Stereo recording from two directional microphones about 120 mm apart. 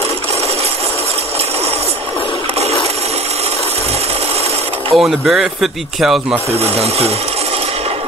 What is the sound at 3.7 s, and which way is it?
Sewing machine, 60° right (ahead or behind).